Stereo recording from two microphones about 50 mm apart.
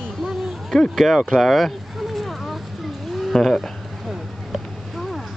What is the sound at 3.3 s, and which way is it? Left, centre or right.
Speech, centre.